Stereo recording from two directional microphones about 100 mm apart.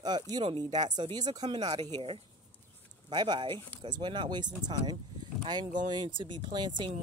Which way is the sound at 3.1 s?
45° right (ahead or behind).